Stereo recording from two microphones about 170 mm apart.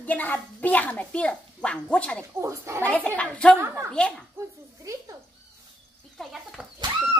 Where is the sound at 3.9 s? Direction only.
5° left (ahead or behind).